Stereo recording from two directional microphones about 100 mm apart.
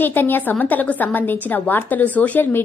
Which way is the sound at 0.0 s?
20° left (ahead or behind).